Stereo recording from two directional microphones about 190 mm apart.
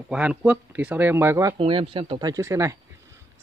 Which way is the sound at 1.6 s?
30° right (ahead or behind).